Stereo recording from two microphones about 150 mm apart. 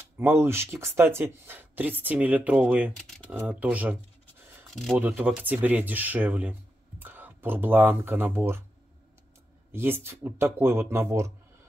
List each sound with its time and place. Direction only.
0.2 s speech: 15° right (ahead or behind)
4.6 s a sound: centre (ahead or behind)
4.9 s speech: 10° right (ahead or behind)
9.7 s speech: 15° right (ahead or behind)